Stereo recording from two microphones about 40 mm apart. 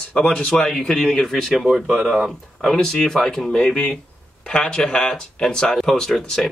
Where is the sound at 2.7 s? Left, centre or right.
Centre.